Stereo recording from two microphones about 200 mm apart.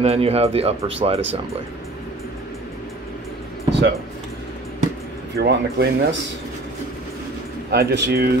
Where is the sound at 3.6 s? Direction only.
60° right (ahead or behind).